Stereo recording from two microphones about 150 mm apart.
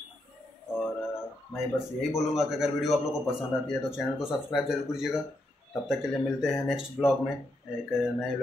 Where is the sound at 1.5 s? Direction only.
Centre (ahead or behind).